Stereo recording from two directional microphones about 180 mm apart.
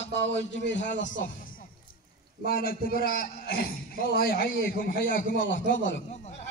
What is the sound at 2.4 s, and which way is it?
A man's voice, 55° left (ahead or behind).